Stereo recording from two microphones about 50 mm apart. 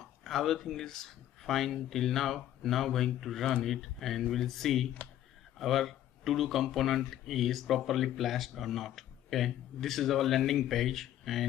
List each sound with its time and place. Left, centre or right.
0.2 s speech: centre